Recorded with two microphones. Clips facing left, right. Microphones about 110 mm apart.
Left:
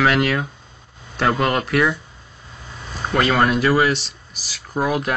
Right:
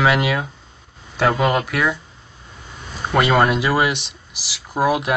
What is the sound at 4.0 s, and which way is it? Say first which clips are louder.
Speech: even; 70° right (ahead or behind).